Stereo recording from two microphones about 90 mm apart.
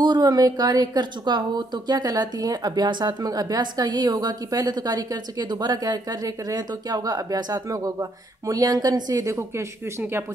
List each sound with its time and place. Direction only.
0.0 s a woman's voice: 50° right (ahead or behind); by 10.2 s 30° right (ahead or behind)